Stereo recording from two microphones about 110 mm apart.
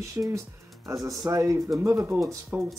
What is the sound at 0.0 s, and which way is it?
Speech, 30° right (ahead or behind).